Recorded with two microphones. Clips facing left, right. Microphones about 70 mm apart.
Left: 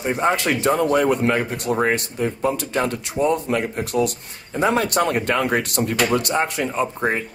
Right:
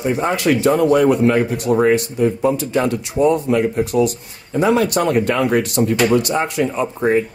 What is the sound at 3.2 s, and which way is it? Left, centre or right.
Speech, right.